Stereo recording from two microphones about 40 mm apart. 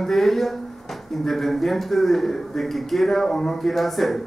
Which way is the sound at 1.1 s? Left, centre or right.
Centre.